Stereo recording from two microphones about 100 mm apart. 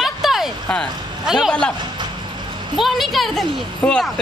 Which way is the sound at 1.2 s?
5° right (ahead or behind).